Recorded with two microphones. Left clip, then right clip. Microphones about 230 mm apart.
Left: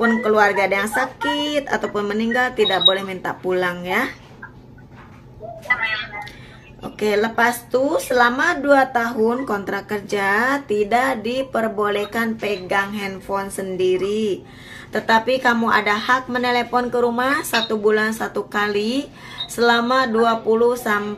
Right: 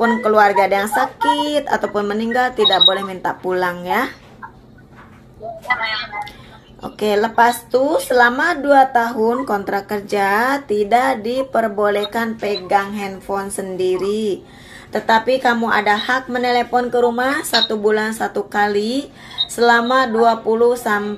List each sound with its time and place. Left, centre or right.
0.0 s a woman's voice: centre
5.7 s a woman's voice: centre